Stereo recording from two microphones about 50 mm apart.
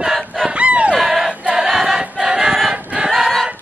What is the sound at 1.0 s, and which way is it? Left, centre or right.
Choir, centre.